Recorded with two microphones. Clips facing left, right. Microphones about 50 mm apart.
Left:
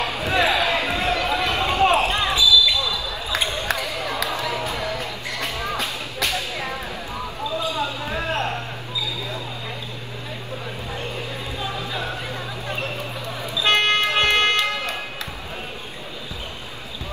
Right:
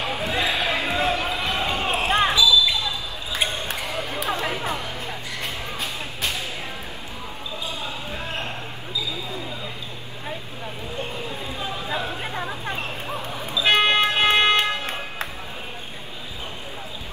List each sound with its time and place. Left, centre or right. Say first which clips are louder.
0.2 s basketball bounce: left 6 dB; left
2.0 s basketball bounce: right 1 dB; right
4.0 s chatter: left 3 dB; left
4.3 s music: even; right
4.7 s music: left 4 dB; left
7.7 s basketball bounce: left 6 dB; left
11.9 s a sound: right 1 dB; right
13.7 s vehicle: even; right
14.2 s music: right 1 dB; right